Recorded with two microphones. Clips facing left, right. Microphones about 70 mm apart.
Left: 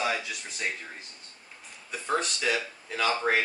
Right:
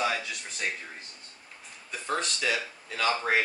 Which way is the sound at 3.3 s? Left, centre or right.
Left.